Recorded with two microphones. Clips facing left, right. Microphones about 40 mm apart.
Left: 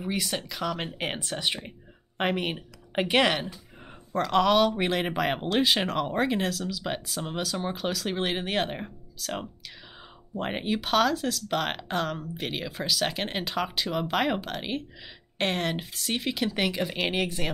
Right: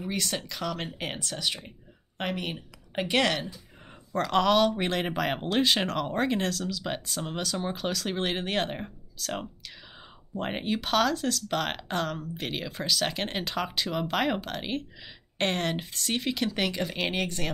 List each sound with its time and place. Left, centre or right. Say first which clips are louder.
0.0 s a woman's voice: left 1 dB; centre
4.1 s speech: left 1 dB; centre